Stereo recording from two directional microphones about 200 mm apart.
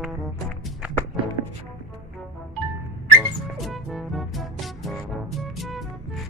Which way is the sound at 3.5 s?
Centre (ahead or behind).